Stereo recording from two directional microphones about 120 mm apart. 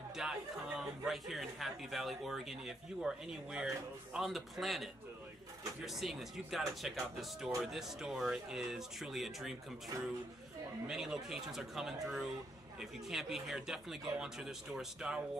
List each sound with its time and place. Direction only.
0.2 s speech: 5° right (ahead or behind)
5.9 s speech: centre (ahead or behind)
10.9 s speech: 5° right (ahead or behind)